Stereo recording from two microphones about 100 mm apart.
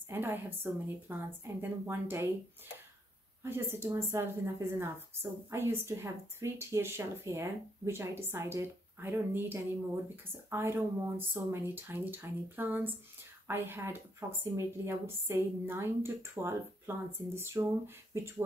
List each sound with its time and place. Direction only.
0.1 s a woman's voice: 20° right (ahead or behind)
3.4 s a woman's voice: 25° right (ahead or behind)
14.2 s speech: 35° right (ahead or behind)
14.9 s a woman's voice: 25° right (ahead or behind)